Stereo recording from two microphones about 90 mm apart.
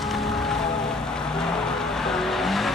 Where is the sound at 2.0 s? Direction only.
5° left (ahead or behind).